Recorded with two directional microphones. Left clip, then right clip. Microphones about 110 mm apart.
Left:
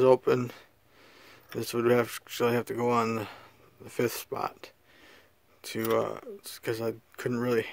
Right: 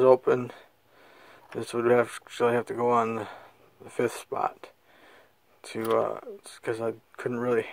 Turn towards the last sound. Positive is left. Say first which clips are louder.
# right 2 dB
turn(degrees=30)  # may be behind; listen again after turning